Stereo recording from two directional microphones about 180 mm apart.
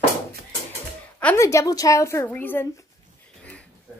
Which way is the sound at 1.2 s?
10° left (ahead or behind).